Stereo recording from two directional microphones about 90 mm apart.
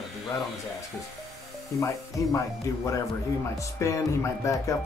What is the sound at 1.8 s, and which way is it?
Music, 35° left (ahead or behind).